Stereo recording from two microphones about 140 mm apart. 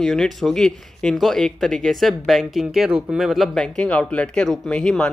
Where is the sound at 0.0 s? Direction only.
5° left (ahead or behind).